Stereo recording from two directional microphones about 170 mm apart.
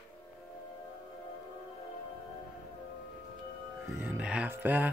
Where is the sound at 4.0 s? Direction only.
10° right (ahead or behind).